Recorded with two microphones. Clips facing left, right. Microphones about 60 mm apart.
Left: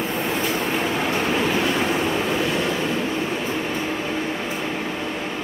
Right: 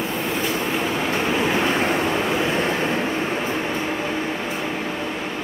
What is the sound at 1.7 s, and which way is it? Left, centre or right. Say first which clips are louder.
Waves: right 1 dB; right.